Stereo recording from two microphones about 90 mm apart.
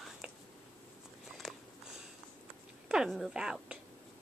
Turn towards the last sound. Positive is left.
turn(degrees=-5)  # may be behind; listen again after turning